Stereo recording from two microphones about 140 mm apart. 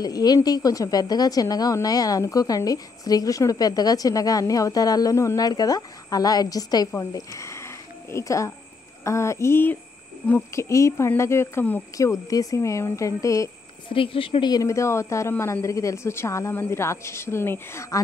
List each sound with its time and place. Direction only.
0.0 s a woman's voice: 30° left (ahead or behind)
13.8 s a woman's voice: 40° left (ahead or behind); by 18.0 s 20° left (ahead or behind)